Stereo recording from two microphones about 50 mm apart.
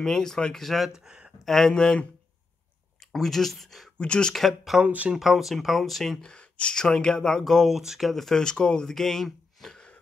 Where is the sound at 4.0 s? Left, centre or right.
Centre.